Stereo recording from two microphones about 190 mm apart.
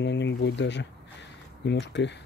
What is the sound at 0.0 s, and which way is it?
Speech, 65° left (ahead or behind).